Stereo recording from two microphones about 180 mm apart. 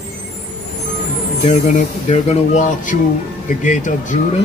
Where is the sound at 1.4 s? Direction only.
40° left (ahead or behind).